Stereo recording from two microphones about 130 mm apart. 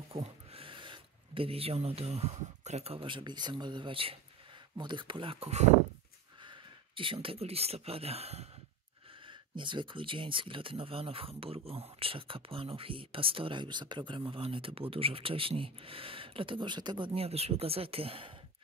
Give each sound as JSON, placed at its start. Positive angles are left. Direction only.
{"t": 0.1, "sound": "speech", "side_deg": -50}
{"t": 6.4, "sound": "speech", "side_deg": -40}
{"t": 9.3, "sound": "speech", "side_deg": -40}